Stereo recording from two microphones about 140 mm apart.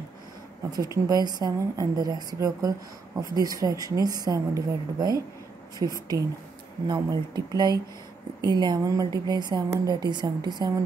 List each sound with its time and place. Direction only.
0.9 s speech: 30° right (ahead or behind)